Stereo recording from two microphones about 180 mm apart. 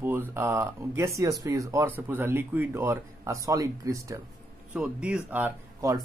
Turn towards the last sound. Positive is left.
turn(degrees=-10)  # may be behind; listen again after turning